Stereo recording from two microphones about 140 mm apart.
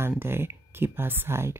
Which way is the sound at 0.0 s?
15° right (ahead or behind).